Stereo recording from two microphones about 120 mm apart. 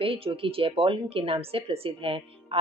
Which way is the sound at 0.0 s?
50° right (ahead or behind).